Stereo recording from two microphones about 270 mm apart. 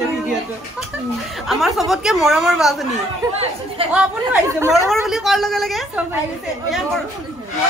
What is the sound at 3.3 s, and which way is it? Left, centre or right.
Speech, right.